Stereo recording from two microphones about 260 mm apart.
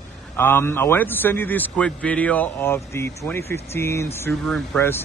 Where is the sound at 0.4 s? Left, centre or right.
Centre.